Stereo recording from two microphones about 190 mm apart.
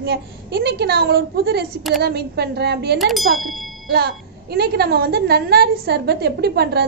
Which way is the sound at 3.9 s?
55° right (ahead or behind).